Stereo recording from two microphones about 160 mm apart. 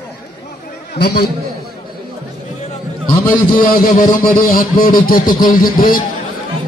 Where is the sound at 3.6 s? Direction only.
65° left (ahead or behind).